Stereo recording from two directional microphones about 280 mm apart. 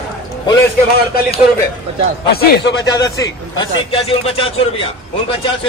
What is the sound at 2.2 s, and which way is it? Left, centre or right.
Speech, left.